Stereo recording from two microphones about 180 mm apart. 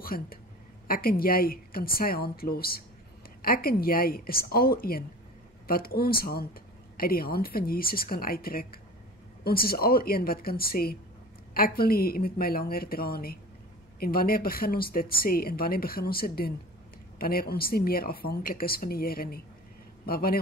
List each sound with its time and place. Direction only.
0.0 s a woman's voice: 55° left (ahead or behind)